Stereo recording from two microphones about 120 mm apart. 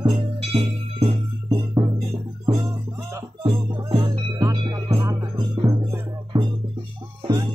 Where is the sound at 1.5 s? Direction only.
35° right (ahead or behind).